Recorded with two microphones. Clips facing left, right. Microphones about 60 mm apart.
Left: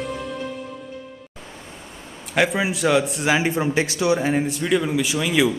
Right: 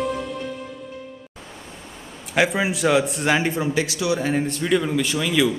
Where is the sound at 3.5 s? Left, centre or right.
Left.